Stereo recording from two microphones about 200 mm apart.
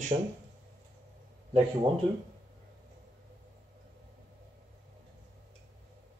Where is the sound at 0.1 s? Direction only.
30° right (ahead or behind).